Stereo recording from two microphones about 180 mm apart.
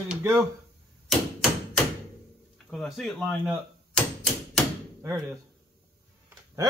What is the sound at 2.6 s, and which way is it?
Speech, centre (ahead or behind).